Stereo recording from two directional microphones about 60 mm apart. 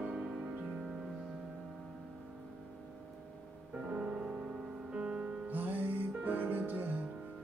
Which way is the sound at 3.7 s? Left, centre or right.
Centre.